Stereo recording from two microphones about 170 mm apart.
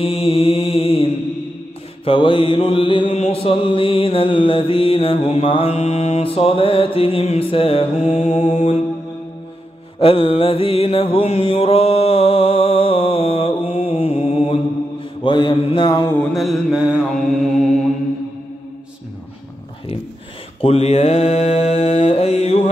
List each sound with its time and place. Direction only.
0.0 s mantra: 35° left (ahead or behind)
9.9 s mantra: 30° left (ahead or behind)
15.2 s mantra: 25° left (ahead or behind)
16.3 s mantra: 5° right (ahead or behind)
20.6 s mantra: 40° left (ahead or behind)